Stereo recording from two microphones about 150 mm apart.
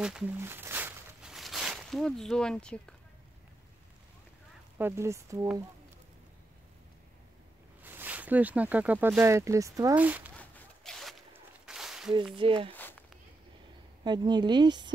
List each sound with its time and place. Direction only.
0.0 s speech: 5° right (ahead or behind)
0.4 s a sound: 15° right (ahead or behind); by 3.0 s 5° left (ahead or behind)
4.7 s a woman's voice: 15° right (ahead or behind)
7.8 s speech: 10° right (ahead or behind)
9.9 s speech: 10° right (ahead or behind)
10.3 s zipper: 5° left (ahead or behind)
11.3 s a sound: 5° right (ahead or behind)
12.4 s speech: 35° right (ahead or behind)
12.7 s a sound: 10° left (ahead or behind)
14.0 s a woman's voice: 30° right (ahead or behind)